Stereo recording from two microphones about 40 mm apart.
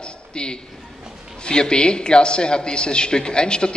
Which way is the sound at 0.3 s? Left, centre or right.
Left.